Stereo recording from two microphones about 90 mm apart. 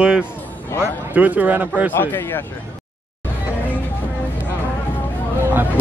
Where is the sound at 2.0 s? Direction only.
25° left (ahead or behind).